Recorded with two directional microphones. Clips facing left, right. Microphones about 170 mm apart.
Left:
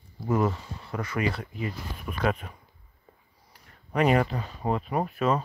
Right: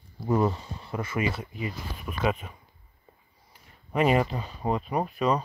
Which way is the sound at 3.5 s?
20° right (ahead or behind).